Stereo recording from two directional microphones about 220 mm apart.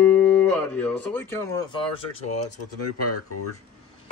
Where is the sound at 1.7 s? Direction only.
25° left (ahead or behind).